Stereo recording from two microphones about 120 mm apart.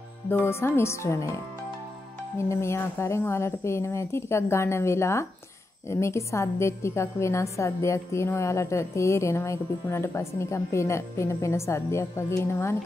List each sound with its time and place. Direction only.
0.3 s a woman's voice: 20° left (ahead or behind)
2.3 s a woman's voice: 25° left (ahead or behind)